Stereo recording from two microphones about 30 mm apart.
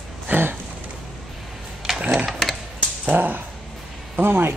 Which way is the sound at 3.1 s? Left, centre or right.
Right.